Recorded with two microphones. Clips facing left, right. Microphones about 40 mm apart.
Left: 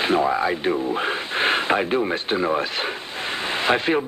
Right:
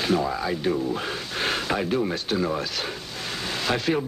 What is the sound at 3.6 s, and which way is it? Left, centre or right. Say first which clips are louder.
Speech: left 4 dB; left.